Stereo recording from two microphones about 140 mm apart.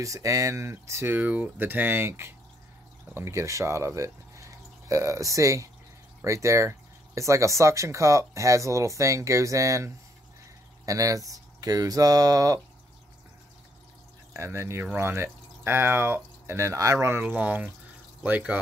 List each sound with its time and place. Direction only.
0.0 s speech: 25° right (ahead or behind)
14.3 s speech: 20° right (ahead or behind)